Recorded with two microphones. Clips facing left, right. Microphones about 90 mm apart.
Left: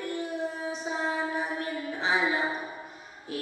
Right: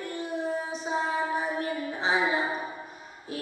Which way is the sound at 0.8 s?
20° right (ahead or behind).